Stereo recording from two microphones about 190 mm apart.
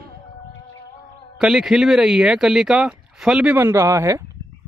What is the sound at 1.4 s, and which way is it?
Speech, 5° right (ahead or behind).